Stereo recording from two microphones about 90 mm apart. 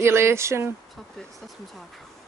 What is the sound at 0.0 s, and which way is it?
Speech, 30° right (ahead or behind).